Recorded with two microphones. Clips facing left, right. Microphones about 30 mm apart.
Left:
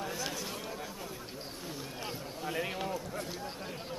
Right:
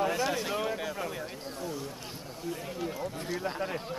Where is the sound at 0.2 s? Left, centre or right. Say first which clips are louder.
Right 8 dB; right.